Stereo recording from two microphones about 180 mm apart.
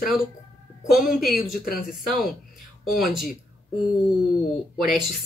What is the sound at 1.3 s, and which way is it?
Speech, 55° left (ahead or behind).